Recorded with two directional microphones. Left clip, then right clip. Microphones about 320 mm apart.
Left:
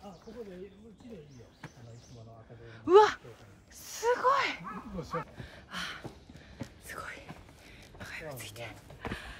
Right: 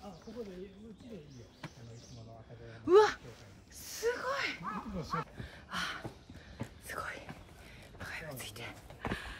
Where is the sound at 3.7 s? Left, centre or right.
Centre.